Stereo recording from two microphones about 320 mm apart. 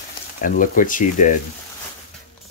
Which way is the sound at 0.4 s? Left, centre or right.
Left.